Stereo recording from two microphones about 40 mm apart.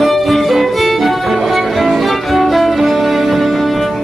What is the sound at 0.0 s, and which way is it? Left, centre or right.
Music, centre.